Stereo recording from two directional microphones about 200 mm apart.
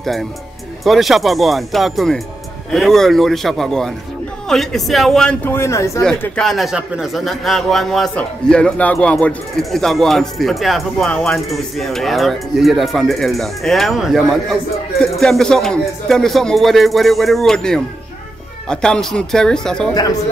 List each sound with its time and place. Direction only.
0.0 s speech: centre (ahead or behind)
6.0 s speech: 5° left (ahead or behind)
19.9 s speech: 20° left (ahead or behind)